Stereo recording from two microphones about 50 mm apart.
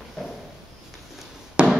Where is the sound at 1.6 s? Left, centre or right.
Right.